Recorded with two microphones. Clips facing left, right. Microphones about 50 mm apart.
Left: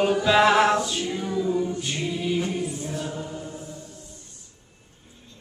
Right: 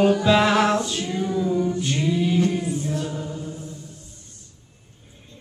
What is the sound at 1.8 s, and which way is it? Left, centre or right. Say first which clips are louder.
A capella: right 5 dB; centre.